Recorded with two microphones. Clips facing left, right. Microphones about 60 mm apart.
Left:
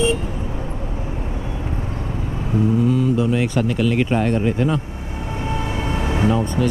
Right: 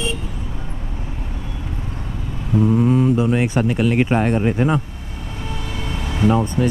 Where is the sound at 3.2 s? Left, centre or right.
Right.